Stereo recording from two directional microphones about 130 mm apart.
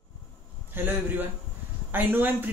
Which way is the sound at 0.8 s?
15° right (ahead or behind).